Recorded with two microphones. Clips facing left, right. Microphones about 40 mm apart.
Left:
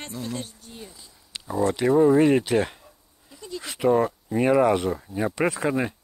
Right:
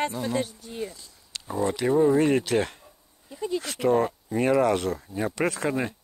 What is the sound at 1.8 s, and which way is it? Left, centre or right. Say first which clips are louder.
Speech: left 3 dB; left.